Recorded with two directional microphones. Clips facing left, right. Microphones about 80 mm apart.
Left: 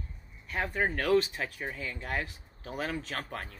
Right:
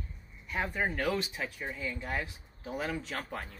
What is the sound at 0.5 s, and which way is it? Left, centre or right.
Speech, left.